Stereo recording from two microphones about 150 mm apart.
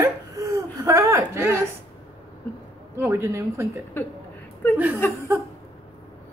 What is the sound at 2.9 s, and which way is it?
Speech, 15° right (ahead or behind).